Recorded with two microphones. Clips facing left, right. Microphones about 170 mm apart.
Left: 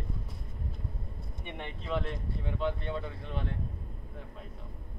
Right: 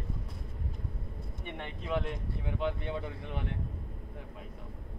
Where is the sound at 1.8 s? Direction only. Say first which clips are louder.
Right 1 dB; 10° right (ahead or behind).